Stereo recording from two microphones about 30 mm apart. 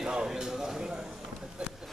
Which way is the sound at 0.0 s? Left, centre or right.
Right.